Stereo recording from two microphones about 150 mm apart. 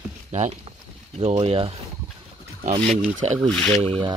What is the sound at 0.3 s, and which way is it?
Speech, 45° right (ahead or behind).